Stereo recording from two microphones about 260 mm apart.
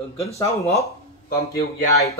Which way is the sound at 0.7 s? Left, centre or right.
Left.